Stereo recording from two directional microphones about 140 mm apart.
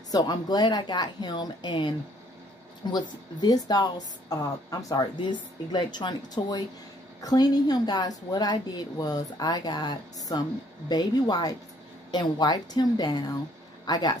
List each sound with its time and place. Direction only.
0.1 s a woman's voice: 30° left (ahead or behind)